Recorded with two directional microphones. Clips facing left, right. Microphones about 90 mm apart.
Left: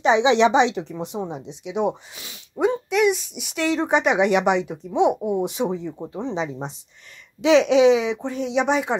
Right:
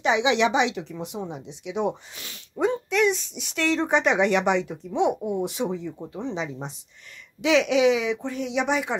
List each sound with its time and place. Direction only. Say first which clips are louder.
0.0 s speech: left 5 dB; 30° left (ahead or behind)